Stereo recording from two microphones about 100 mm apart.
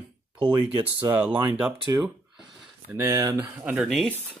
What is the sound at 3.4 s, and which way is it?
Speech, 15° right (ahead or behind).